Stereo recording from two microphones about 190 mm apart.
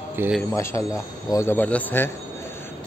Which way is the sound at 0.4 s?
15° left (ahead or behind).